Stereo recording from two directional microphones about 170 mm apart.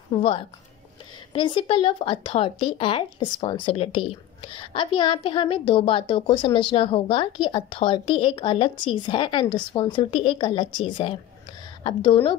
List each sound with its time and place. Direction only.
0.2 s speech: 30° left (ahead or behind)